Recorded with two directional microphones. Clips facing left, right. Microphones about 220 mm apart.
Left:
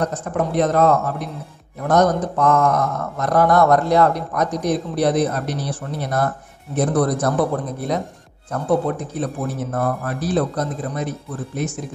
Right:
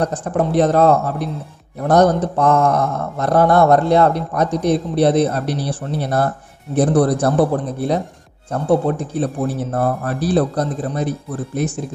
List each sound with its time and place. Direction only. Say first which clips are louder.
0.0 s speech: right 3 dB; 30° right (ahead or behind)